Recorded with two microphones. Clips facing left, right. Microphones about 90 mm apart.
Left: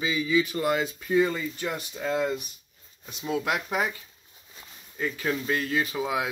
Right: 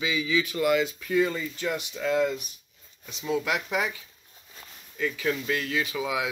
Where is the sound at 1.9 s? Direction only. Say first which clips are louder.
Right 2 dB; 30° left (ahead or behind).